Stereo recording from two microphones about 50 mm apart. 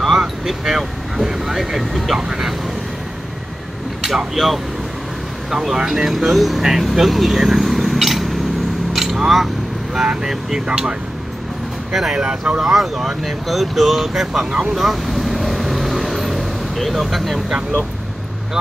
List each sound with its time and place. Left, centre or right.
0.0 s vehicle: centre
2.1 s speech: centre
4.0 s speech: centre
8.9 s a sound: centre
9.9 s speech: centre
12.2 s speech: centre
12.5 s speech: centre
14.5 s vehicle: centre